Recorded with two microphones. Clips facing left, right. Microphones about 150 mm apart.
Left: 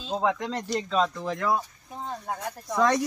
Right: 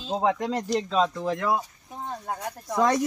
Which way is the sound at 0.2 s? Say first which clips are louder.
Right 2 dB; 15° right (ahead or behind).